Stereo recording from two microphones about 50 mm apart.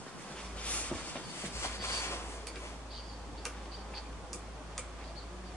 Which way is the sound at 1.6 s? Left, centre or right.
Left.